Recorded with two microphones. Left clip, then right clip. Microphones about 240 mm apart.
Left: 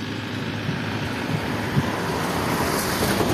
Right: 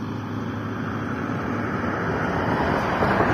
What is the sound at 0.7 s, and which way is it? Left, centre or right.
Vehicle, centre.